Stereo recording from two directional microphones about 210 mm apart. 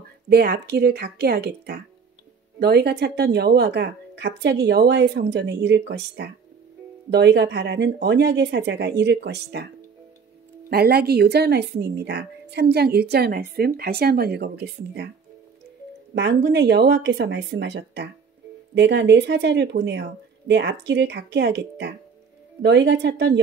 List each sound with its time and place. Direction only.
0.3 s speech: 50° right (ahead or behind)
10.7 s speech: 50° right (ahead or behind)
16.2 s speech: 55° right (ahead or behind)